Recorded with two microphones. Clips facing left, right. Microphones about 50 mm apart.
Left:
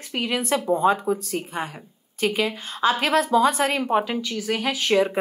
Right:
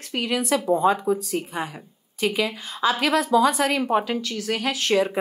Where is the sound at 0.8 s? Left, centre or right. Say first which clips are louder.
Even; left.